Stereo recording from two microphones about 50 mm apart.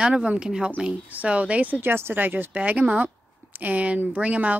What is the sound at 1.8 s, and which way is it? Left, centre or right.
Speech, right.